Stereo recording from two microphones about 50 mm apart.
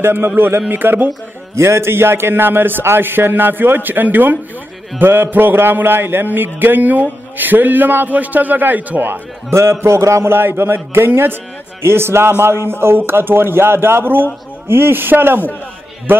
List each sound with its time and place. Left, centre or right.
0.0 s a man's voice: right
0.7 s a man's voice: right
1.5 s a man's voice: right
9.5 s a man's voice: right
10.2 s a man's voice: right